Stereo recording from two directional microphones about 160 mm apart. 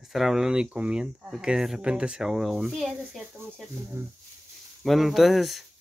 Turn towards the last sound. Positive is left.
turn(degrees=0)  # may be behind; listen again after turning